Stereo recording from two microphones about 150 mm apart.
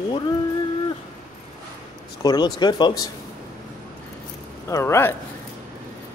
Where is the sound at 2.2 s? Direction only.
30° left (ahead or behind).